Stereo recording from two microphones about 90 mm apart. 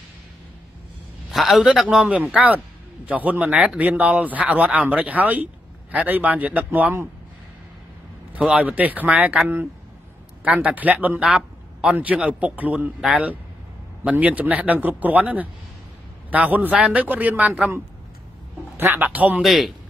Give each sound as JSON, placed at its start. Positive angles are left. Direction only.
{"t": 1.3, "sound": "speech", "side_deg": 0}
{"t": 8.3, "sound": "speech", "side_deg": -10}
{"t": 10.4, "sound": "speech", "side_deg": -15}
{"t": 11.2, "sound": "a sound", "side_deg": -5}
{"t": 11.9, "sound": "speech", "side_deg": -15}
{"t": 18.8, "sound": "a man's voice", "side_deg": -20}
{"t": 19.3, "sound": "speech", "side_deg": 0}